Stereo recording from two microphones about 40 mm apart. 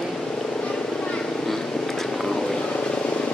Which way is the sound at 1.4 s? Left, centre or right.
Centre.